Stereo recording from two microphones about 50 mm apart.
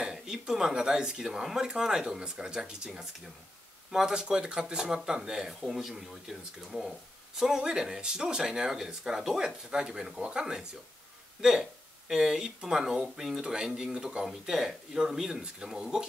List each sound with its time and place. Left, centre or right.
0.0 s speech: centre
3.9 s speech: centre